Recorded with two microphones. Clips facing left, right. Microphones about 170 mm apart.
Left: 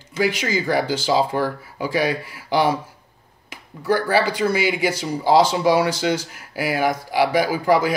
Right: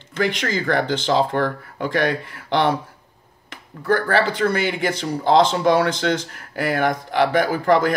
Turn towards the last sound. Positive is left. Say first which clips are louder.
# right 1 dB
turn(degrees=5)  # may be behind; listen again after turning